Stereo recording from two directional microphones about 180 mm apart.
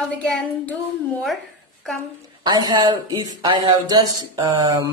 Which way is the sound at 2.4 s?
25° right (ahead or behind).